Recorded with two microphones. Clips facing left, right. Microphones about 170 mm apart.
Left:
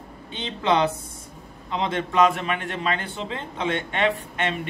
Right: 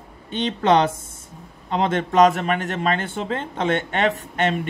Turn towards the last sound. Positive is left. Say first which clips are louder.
# right 5 dB
turn(degrees=-45)  # may be behind; listen again after turning